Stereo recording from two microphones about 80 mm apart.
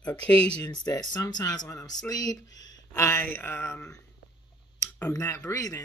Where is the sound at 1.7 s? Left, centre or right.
Left.